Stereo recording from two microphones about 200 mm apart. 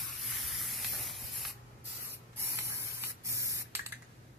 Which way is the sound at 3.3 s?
15° right (ahead or behind).